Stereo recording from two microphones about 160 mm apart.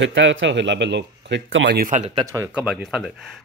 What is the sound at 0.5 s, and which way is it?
Speech, 90° right.